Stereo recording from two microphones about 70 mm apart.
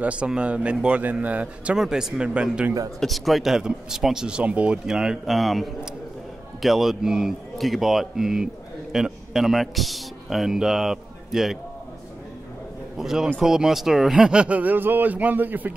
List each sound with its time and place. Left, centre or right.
0.0 s speech: centre
1.8 s speech: centre
3.0 s speech: centre
12.9 s speech: centre; by 15.7 s right